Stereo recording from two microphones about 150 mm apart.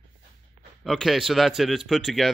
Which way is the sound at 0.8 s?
Centre (ahead or behind).